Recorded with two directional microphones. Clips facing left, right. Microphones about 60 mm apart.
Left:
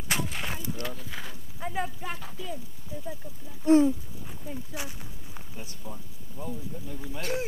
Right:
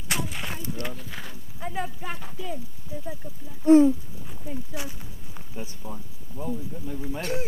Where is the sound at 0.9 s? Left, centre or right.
Centre.